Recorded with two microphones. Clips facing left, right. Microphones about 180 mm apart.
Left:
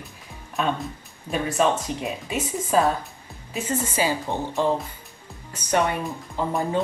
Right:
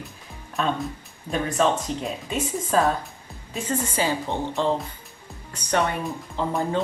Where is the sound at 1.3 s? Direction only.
10° left (ahead or behind).